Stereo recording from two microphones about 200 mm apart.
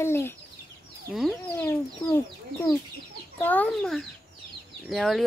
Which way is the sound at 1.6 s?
10° left (ahead or behind).